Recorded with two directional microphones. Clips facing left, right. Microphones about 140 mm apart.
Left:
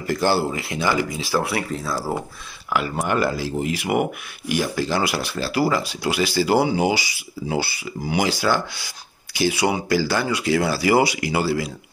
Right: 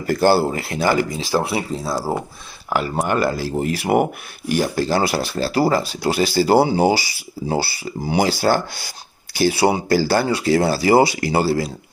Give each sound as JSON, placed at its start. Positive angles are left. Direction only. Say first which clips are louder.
{"t": 0.0, "sound": "speech", "louder": "right 4 dB", "side_deg": -45}
{"t": 1.1, "sound": "speech", "louder": "right 2 dB", "side_deg": -25}
{"t": 1.8, "sound": "speech", "louder": "right 3 dB", "side_deg": -35}